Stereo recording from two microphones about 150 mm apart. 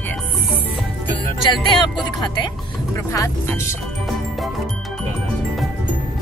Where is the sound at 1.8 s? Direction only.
30° left (ahead or behind).